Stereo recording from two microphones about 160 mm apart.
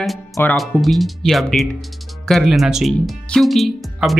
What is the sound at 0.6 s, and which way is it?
Speech, centre (ahead or behind).